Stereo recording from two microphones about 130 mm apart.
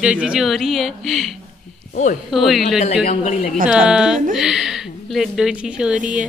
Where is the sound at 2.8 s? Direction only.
60° left (ahead or behind).